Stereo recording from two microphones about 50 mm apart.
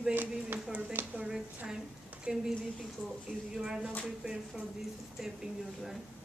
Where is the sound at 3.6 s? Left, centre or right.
Centre.